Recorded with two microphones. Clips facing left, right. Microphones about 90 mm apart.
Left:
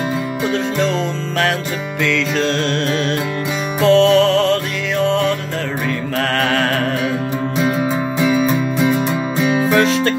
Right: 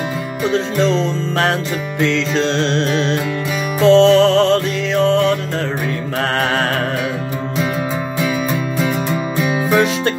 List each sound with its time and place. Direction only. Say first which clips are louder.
0.5 s music: right 3 dB; 25° right (ahead or behind)
9.4 s music: left 1 dB; 15° right (ahead or behind)